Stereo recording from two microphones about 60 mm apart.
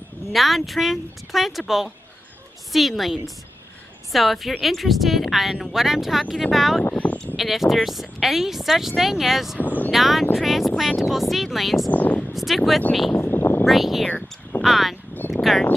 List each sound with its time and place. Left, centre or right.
0.3 s speech: centre
2.7 s speech: centre
6.8 s speech: left
7.3 s speech: centre
11.9 s speech: left
12.3 s speech: centre
13.1 s a sound: left
13.7 s speech: centre
15.1 s a sound: left